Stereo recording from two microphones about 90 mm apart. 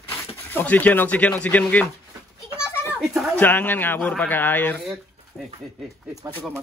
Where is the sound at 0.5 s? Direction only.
20° left (ahead or behind).